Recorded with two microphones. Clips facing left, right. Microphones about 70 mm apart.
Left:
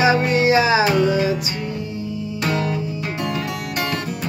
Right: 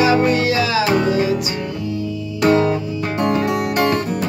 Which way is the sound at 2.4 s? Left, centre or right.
Right.